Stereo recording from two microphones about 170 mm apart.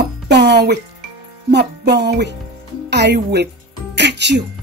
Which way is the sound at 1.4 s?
85° right.